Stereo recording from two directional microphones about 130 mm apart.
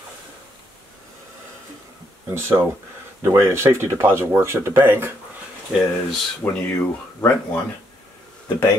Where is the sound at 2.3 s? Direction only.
15° right (ahead or behind).